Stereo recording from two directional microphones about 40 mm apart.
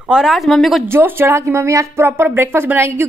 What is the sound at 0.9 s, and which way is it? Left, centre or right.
A woman's voice, right.